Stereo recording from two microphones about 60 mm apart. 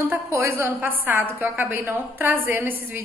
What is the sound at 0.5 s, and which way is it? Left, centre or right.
A woman's voice, right.